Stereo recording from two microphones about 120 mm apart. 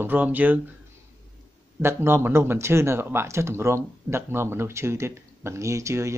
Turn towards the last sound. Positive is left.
turn(degrees=-25)  # may be behind; listen again after turning